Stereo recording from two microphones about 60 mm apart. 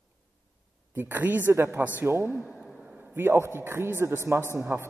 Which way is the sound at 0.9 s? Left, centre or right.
Right.